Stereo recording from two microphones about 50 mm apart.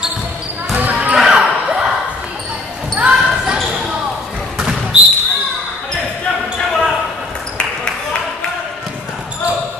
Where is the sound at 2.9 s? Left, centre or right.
Right.